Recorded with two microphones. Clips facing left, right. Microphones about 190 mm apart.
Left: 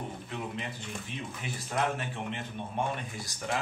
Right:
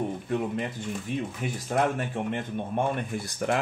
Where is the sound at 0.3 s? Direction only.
50° right (ahead or behind).